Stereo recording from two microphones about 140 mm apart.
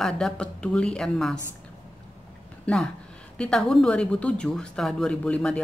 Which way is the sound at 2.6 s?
5° left (ahead or behind).